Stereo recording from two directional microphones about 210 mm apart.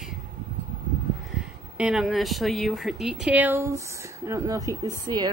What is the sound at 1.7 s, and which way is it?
Speech, 5° right (ahead or behind).